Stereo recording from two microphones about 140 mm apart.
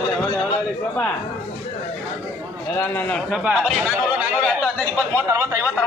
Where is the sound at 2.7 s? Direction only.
15° left (ahead or behind).